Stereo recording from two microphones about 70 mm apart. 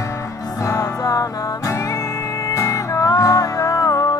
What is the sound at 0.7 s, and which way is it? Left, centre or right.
Music, left.